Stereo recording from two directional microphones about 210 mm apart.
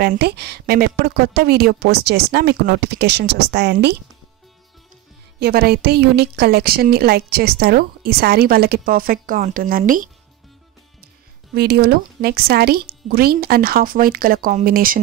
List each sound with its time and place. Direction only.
0.0 s a woman's voice: 50° right (ahead or behind)
5.4 s a woman's voice: 45° right (ahead or behind)
11.5 s a woman's voice: 50° right (ahead or behind)